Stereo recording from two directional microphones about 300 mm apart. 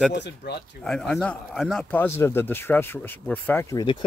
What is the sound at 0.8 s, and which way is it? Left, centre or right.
Speech, centre.